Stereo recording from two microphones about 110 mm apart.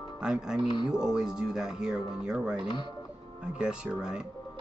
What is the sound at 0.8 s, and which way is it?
Speech, 5° right (ahead or behind).